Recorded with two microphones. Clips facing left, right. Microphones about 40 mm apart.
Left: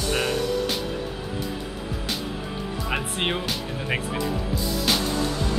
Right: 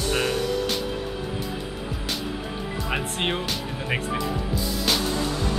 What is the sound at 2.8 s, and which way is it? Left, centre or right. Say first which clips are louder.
Speech: even; centre.